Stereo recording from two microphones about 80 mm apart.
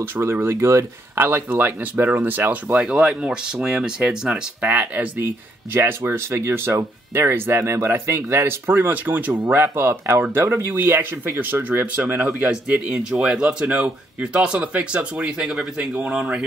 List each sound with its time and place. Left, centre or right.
0.0 s speech: right
1.2 s speech: right